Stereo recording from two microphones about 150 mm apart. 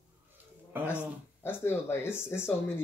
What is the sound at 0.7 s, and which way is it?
Dog, 15° right (ahead or behind).